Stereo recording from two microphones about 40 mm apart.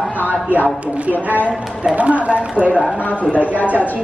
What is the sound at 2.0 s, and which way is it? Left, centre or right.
Speech, right.